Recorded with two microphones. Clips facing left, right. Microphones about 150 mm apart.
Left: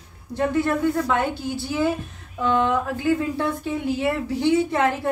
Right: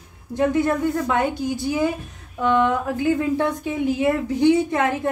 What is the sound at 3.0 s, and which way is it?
A woman's voice, 15° right (ahead or behind).